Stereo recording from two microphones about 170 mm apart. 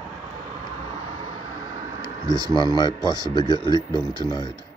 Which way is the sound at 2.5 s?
25° left (ahead or behind).